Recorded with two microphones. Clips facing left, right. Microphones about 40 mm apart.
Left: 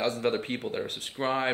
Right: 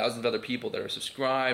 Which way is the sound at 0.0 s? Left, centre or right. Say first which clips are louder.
Even; centre.